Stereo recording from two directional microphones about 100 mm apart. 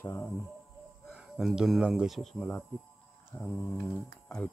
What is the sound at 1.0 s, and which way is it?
Speech, 5° right (ahead or behind).